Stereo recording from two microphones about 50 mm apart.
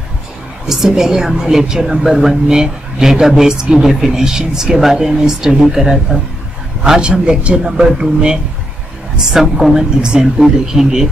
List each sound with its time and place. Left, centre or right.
0.7 s speech: centre